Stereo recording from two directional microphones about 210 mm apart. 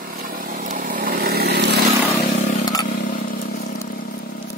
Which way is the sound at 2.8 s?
40° left (ahead or behind).